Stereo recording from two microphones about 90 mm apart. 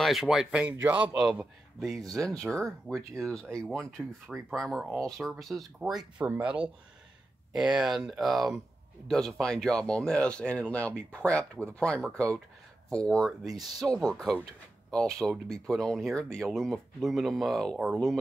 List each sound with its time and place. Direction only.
0.0 s a man's voice: 5° right (ahead or behind)
1.9 s speech: 5° left (ahead or behind)
6.1 s a man's voice: 15° right (ahead or behind)
7.5 s speech: 5° right (ahead or behind)
13.4 s speech: 5° right (ahead or behind)